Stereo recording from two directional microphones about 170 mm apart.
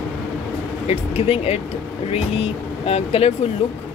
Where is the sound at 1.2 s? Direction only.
35° left (ahead or behind).